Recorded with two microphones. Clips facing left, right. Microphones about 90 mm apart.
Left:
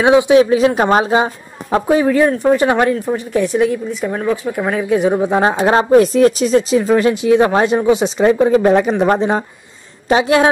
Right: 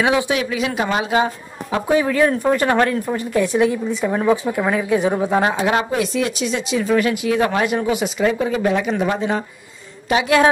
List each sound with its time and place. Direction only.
0.0 s speech: 25° left (ahead or behind); by 1.1 s 40° left (ahead or behind)
1.1 s speech: 30° left (ahead or behind)
2.0 s speech: 5° left (ahead or behind)
3.2 s a woman's voice: centre (ahead or behind)
5.4 s a woman's voice: 30° left (ahead or behind)